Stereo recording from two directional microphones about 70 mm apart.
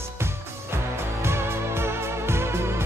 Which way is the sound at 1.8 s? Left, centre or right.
Right.